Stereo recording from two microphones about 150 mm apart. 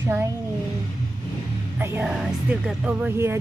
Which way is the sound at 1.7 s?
15° right (ahead or behind).